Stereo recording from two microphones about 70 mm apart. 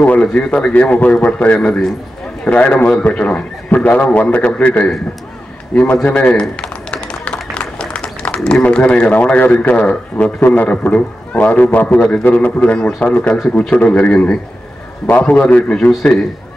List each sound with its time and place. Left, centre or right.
0.0 s a man's voice: left
6.6 s tap: centre
7.5 s a sound: centre
8.5 s a man's voice: centre